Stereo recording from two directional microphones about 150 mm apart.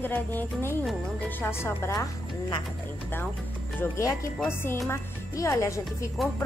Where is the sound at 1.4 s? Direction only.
15° left (ahead or behind).